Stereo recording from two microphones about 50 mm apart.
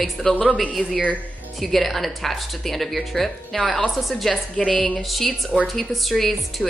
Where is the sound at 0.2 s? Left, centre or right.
Centre.